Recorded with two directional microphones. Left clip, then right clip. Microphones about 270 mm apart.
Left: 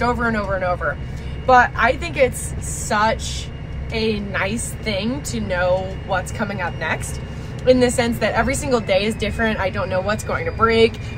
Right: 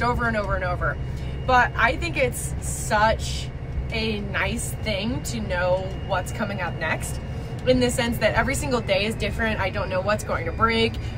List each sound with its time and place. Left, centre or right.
0.0 s a woman's voice: centre